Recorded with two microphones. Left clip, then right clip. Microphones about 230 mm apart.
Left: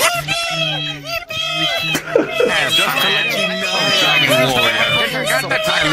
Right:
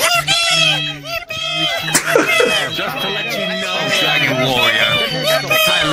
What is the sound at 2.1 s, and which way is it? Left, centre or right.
Snicker, right.